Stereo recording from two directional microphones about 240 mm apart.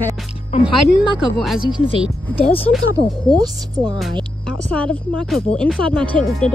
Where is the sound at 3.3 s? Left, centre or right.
Centre.